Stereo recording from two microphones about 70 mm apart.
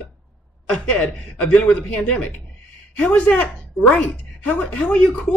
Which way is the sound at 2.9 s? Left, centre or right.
Centre.